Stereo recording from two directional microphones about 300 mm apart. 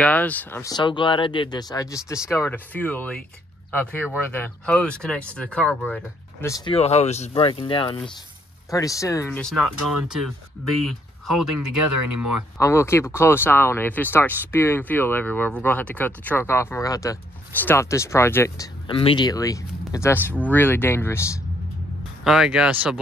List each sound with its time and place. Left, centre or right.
0.0 s speech: centre
11.2 s speech: right
12.5 s speech: centre
22.2 s speech: centre